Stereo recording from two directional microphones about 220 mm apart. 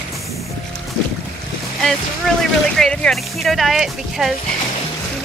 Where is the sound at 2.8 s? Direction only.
Centre (ahead or behind).